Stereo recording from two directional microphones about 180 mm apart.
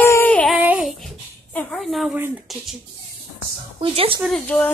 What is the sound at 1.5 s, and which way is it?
Speech, centre (ahead or behind).